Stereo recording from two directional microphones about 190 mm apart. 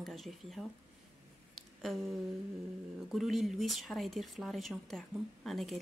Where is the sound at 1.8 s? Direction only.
Centre (ahead or behind).